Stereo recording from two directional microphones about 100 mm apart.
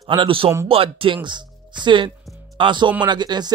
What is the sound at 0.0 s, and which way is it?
Speech, 60° right (ahead or behind).